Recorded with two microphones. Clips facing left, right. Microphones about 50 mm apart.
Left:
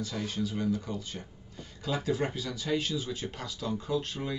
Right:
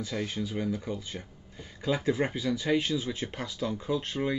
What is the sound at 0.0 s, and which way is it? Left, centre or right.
Speech, right.